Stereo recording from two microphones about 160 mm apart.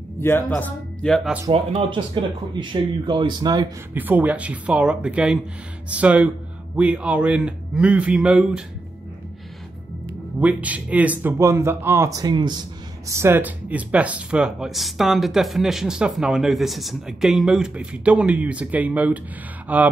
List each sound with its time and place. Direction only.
0.2 s speech: 15° left (ahead or behind)
1.5 s speech: 35° right (ahead or behind)
3.9 s speech: 10° right (ahead or behind)
10.4 s speech: 10° right (ahead or behind); by 12.6 s 25° right (ahead or behind)
13.1 s speech: 15° right (ahead or behind)